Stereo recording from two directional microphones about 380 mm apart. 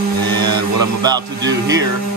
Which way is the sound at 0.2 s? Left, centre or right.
Right.